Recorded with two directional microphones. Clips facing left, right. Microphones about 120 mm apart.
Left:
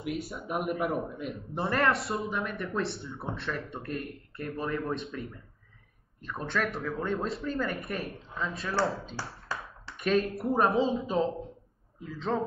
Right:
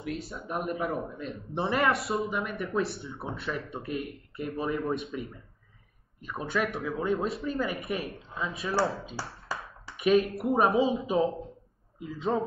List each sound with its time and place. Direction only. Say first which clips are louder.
0.0 s a man's voice: left 1 dB; centre (ahead or behind)
9.5 s a sound: right 1 dB; 10° right (ahead or behind)
9.8 s a man's voice: right 4 dB; 5° right (ahead or behind)